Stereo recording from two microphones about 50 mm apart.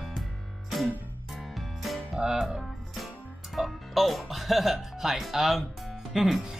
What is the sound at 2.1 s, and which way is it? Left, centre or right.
Speech, centre.